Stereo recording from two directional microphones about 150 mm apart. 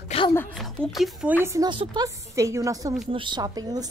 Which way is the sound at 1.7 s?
30° right (ahead or behind).